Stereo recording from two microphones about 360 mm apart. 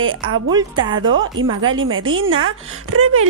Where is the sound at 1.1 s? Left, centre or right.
Right.